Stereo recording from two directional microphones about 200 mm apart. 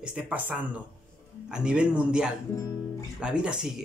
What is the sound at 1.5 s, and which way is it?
Speech, 5° right (ahead or behind).